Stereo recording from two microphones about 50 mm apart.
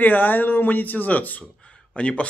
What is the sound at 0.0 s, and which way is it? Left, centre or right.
Speech, left.